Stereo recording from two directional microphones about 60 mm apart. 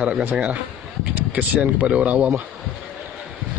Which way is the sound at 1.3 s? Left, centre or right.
Right.